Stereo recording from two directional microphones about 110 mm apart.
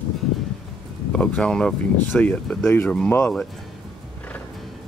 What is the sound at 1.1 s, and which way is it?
Speech, 10° left (ahead or behind).